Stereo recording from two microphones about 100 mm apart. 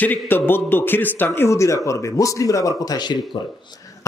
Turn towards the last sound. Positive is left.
turn(degrees=40)  # may be behind; listen again after turning